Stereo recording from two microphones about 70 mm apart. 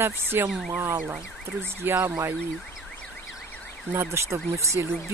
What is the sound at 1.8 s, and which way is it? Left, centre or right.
Speech, right.